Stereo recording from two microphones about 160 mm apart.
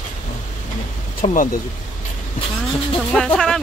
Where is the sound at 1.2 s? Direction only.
55° left (ahead or behind).